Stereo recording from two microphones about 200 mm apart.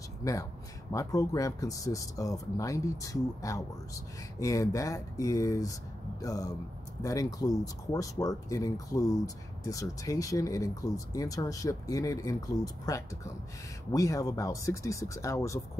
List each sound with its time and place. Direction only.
0.2 s a man's voice: 15° left (ahead or behind)